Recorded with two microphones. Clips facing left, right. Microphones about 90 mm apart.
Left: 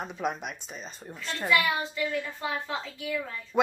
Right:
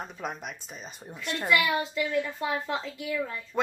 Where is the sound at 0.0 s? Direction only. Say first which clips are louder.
Left 4 dB; 5° left (ahead or behind).